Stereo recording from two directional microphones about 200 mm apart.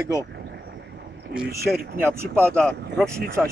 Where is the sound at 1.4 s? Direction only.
50° right (ahead or behind).